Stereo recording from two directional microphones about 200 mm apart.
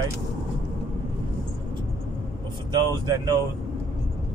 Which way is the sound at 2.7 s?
20° right (ahead or behind).